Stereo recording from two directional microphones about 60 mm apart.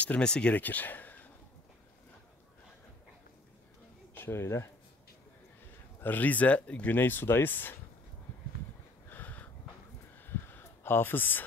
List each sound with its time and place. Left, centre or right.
0.0 s speech: centre
0.6 s speech: left
4.1 s speech: left
5.9 s speech: left
9.1 s a sound: left